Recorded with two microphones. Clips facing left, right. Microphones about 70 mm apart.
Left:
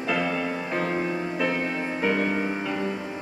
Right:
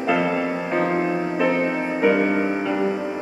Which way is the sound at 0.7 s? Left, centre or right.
Centre.